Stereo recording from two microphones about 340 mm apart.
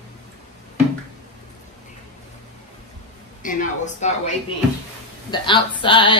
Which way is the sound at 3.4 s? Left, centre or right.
Left.